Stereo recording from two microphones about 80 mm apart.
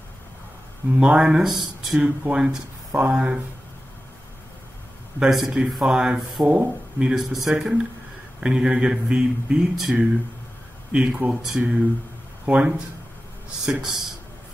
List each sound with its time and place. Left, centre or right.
0.9 s speech: centre
2.0 s speech: centre
5.2 s speech: centre
6.4 s speech: centre